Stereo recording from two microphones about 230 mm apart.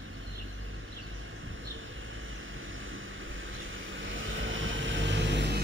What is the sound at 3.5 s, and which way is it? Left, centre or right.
Vehicle, right.